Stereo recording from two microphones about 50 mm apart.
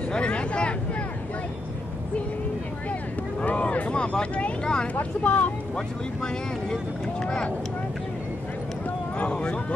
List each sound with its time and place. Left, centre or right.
0.1 s speech: left
2.9 s vehicle: left
3.9 s speech: left
5.2 s speech: left
5.8 s speech: centre
9.2 s speech: left